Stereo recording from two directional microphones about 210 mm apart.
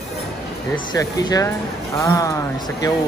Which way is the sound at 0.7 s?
20° left (ahead or behind).